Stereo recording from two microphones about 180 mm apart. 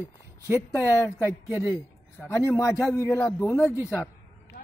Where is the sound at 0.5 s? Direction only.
15° left (ahead or behind).